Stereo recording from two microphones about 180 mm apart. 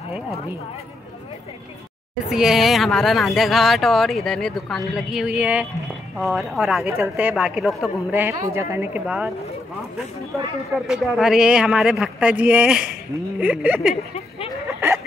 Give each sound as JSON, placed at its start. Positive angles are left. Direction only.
{"t": 2.2, "sound": "a woman's voice", "side_deg": -5}
{"t": 10.9, "sound": "a woman's voice", "side_deg": -5}
{"t": 14.7, "sound": "a sound", "side_deg": -15}